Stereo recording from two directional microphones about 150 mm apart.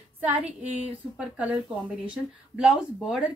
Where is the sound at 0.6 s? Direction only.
45° right (ahead or behind).